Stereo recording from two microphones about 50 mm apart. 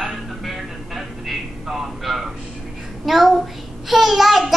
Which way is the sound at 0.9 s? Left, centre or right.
Centre.